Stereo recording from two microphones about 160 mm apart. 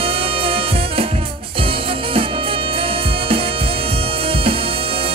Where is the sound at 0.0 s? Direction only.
35° right (ahead or behind).